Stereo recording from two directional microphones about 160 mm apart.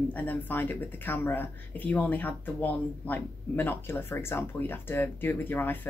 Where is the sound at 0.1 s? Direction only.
10° left (ahead or behind).